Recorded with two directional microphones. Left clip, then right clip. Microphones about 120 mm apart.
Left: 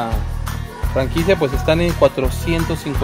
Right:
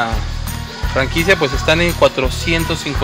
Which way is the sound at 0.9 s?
15° left (ahead or behind).